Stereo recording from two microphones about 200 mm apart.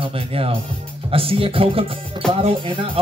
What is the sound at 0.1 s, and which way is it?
Speech, 30° right (ahead or behind).